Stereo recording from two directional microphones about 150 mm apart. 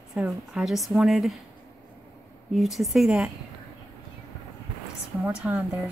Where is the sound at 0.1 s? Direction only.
5° right (ahead or behind).